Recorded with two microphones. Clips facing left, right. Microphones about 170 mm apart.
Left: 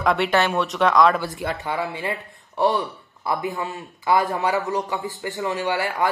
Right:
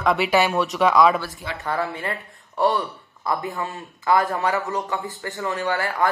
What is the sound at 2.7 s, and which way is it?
Speech, centre (ahead or behind).